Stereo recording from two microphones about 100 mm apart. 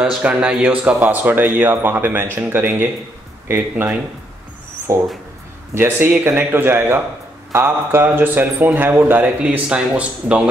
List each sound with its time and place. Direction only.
0.0 s a man's voice: 10° right (ahead or behind)